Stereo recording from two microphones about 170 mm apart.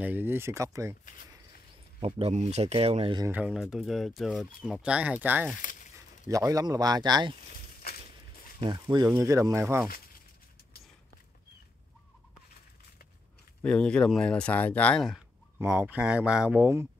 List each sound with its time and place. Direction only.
0.0 s speech: 10° right (ahead or behind)
2.0 s speech: 35° right (ahead or behind)
3.3 s speech: 10° right (ahead or behind)
5.6 s a sound: 50° left (ahead or behind)
5.9 s speech: 20° right (ahead or behind)
8.5 s speech: 25° right (ahead or behind)
13.6 s speech: 5° left (ahead or behind)
15.6 s speech: 10° right (ahead or behind)